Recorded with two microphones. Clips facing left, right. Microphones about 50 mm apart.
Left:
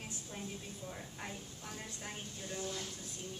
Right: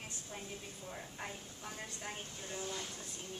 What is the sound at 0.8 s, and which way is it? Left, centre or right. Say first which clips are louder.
A woman's voice: right 2 dB; centre.